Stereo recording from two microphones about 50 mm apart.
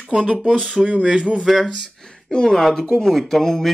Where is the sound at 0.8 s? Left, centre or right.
Right.